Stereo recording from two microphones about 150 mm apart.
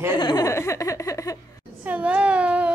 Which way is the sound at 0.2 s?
25° left (ahead or behind).